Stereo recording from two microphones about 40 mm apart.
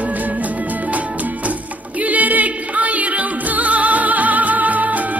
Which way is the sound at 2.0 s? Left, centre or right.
Right.